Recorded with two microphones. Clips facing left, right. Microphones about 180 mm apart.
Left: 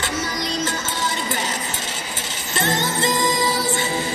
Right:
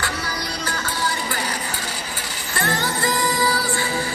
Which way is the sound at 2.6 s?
20° left (ahead or behind).